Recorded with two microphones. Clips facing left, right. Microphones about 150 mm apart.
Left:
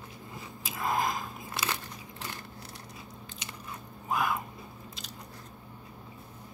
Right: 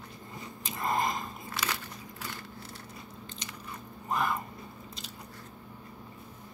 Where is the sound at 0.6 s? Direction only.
Centre (ahead or behind).